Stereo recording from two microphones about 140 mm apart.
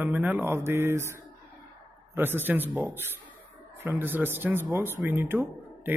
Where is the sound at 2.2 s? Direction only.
15° right (ahead or behind).